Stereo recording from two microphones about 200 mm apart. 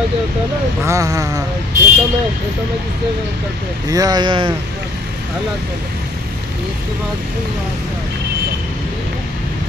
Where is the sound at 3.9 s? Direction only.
20° right (ahead or behind).